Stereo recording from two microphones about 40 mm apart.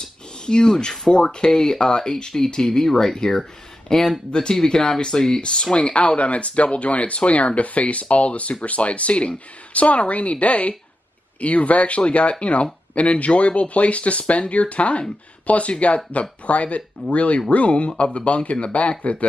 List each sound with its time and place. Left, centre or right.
0.0 s speech: centre
5.9 s speech: left